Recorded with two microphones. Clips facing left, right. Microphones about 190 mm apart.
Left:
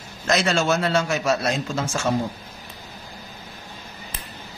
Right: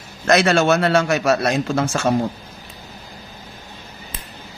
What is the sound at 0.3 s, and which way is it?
A man's voice, 65° right (ahead or behind).